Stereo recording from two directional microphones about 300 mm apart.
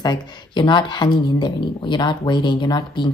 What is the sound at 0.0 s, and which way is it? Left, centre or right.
Speech, centre.